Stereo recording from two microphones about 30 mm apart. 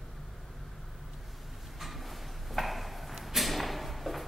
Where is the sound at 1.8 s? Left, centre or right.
Centre.